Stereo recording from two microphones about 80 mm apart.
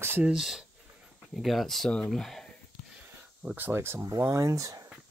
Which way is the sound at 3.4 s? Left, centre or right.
Right.